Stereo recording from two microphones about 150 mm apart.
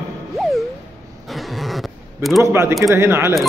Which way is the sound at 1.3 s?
Centre (ahead or behind).